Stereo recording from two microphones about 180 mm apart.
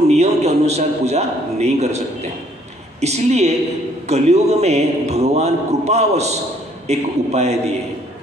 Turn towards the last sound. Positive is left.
turn(degrees=-35)  # may be behind; listen again after turning